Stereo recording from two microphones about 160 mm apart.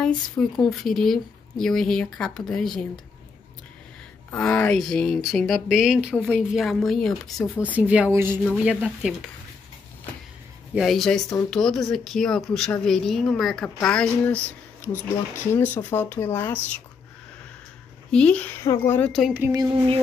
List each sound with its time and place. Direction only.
0.0 s speech: 5° left (ahead or behind)
4.3 s speech: 10° left (ahead or behind)
10.7 s speech: centre (ahead or behind)
18.1 s speech: 10° left (ahead or behind)
19.5 s music: 25° right (ahead or behind)